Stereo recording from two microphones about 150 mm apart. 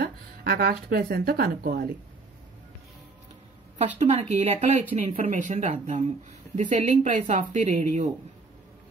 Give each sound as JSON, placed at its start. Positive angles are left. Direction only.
{"t": 0.0, "sound": "speech", "side_deg": -90}
{"t": 3.7, "sound": "speech", "side_deg": -45}